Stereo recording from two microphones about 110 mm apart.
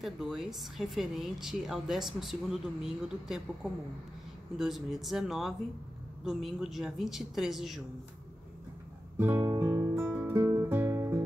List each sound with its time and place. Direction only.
0.0 s a woman's voice: 5° right (ahead or behind)
9.2 s guitar: 15° right (ahead or behind)
9.6 s music: 30° right (ahead or behind)
10.0 s music: 15° right (ahead or behind)